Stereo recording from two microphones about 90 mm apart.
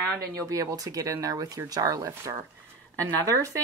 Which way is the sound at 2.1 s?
30° right (ahead or behind).